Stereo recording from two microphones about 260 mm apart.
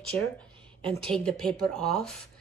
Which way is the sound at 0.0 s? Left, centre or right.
Centre.